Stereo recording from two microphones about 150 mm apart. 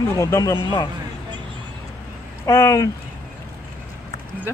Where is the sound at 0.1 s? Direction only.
20° left (ahead or behind).